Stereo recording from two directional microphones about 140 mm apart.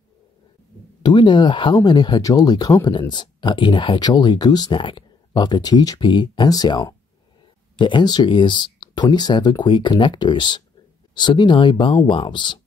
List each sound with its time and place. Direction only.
1.0 s speech: 35° left (ahead or behind)